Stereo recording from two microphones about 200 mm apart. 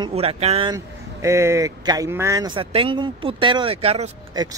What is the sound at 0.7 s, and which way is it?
Speech, 15° right (ahead or behind).